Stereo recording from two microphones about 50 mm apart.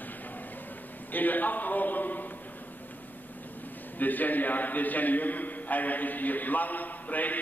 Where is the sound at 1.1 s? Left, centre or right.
Left.